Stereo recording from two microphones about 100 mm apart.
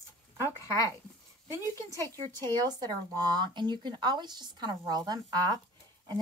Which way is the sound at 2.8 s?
40° right (ahead or behind).